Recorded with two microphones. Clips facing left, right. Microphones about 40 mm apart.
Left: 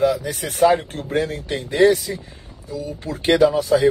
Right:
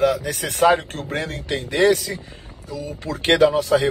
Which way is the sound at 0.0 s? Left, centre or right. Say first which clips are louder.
Even; right.